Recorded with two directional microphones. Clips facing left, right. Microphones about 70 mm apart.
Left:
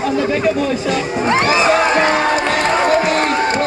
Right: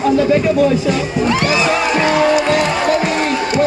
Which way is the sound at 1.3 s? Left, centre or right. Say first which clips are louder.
Left 3 dB; left.